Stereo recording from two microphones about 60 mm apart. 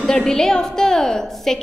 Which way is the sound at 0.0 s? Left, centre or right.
Centre.